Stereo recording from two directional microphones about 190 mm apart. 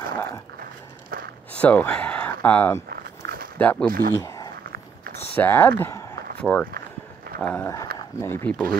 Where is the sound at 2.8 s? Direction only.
50° right (ahead or behind).